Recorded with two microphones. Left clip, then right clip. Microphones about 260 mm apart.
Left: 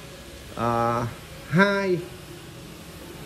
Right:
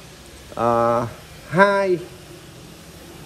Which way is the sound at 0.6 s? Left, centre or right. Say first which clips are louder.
Right 6 dB; right.